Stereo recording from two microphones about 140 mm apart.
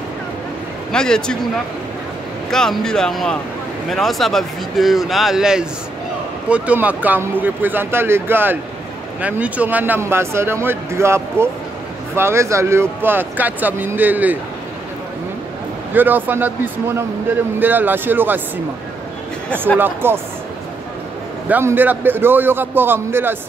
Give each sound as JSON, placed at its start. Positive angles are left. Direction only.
{"t": 0.9, "sound": "speech", "side_deg": 5}
{"t": 2.5, "sound": "speech", "side_deg": 5}
{"t": 15.9, "sound": "speech", "side_deg": -15}
{"t": 19.8, "sound": "speech", "side_deg": -15}
{"t": 21.5, "sound": "speech", "side_deg": -15}